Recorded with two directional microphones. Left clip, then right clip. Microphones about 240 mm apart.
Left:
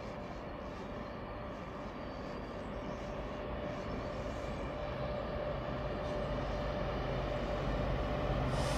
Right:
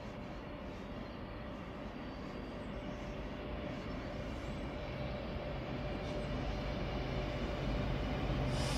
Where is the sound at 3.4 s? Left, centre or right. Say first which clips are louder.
Left 3 dB; centre.